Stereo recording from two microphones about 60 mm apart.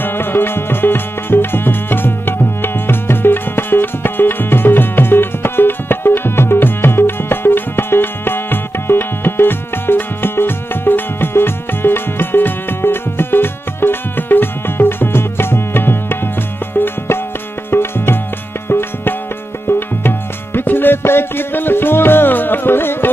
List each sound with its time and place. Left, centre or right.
0.0 s music: left
17.6 s music: left